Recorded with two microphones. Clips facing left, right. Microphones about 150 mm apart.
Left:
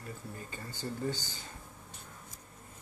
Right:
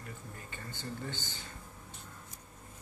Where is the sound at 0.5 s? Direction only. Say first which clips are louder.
Left 2 dB; 40° left (ahead or behind).